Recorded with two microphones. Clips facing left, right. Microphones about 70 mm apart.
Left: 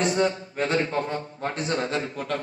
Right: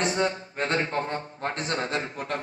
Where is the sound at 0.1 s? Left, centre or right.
Right.